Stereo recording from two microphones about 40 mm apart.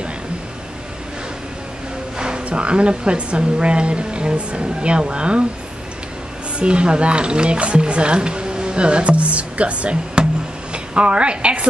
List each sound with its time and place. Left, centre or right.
2.1 s speech: right
6.6 s speech: right
10.7 s a sound: right